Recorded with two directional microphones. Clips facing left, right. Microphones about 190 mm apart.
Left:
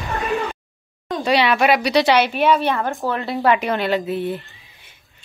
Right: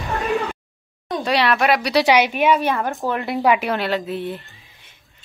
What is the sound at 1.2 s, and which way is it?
Speech, centre (ahead or behind).